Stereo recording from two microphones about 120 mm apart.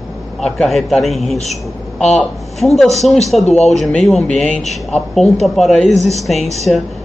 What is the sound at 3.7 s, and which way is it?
A man's voice, 5° left (ahead or behind).